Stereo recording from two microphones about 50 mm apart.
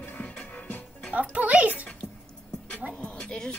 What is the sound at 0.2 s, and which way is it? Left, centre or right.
Music, left.